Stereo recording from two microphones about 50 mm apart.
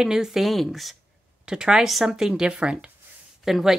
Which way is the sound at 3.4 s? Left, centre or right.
Centre.